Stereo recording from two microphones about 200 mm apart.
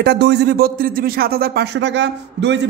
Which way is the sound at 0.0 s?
55° right (ahead or behind).